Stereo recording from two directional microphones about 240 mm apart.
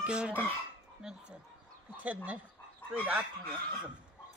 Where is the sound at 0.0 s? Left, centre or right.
Centre.